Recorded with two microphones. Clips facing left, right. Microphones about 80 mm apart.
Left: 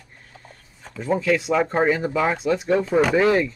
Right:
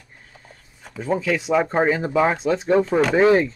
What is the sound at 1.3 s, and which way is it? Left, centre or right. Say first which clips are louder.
Speech: right 1 dB; centre.